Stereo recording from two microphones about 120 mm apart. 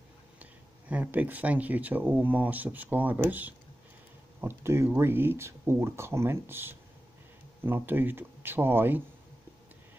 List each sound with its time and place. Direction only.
0.4 s speech: 10° right (ahead or behind)